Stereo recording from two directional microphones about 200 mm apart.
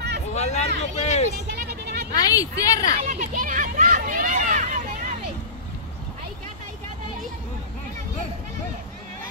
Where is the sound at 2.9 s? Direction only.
40° right (ahead or behind).